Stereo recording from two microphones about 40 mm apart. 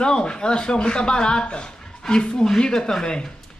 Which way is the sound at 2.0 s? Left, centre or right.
Centre.